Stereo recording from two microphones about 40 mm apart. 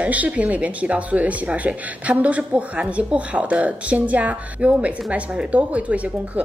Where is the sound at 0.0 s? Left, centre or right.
Right.